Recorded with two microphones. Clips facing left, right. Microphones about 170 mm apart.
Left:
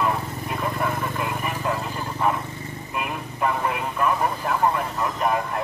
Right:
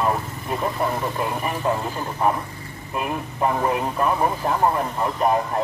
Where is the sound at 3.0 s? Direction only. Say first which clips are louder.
Right 3 dB; 35° right (ahead or behind).